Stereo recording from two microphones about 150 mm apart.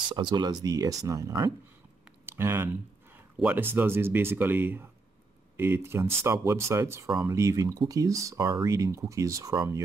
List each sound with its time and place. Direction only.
0.0 s speech: 30° right (ahead or behind)
2.2 s a sound: 15° right (ahead or behind)
3.3 s speech: 10° right (ahead or behind)